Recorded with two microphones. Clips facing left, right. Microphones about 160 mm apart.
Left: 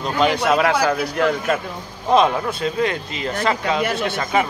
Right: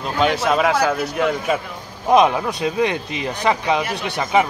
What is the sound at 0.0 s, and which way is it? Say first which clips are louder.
Speech: even; centre (ahead or behind).